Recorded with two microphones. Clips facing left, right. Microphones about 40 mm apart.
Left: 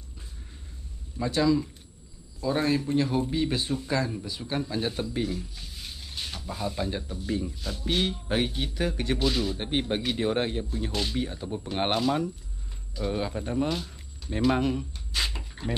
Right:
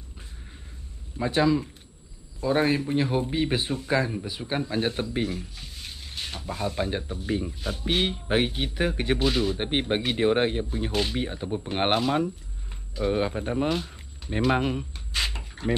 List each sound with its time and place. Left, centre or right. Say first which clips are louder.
1.1 s speech: right 1 dB; right